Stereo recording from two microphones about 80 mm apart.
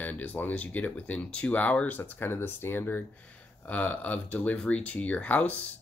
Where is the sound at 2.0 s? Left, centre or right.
Left.